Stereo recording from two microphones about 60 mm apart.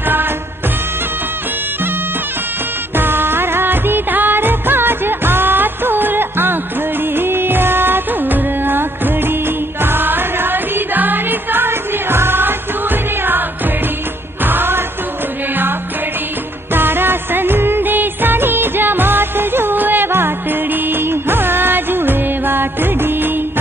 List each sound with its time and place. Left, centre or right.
3.0 s music: right
7.2 s music of bollywood: right
14.4 s music: right
16.7 s music of bollywood: right